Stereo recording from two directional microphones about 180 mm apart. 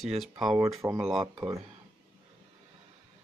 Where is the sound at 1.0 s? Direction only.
25° right (ahead or behind).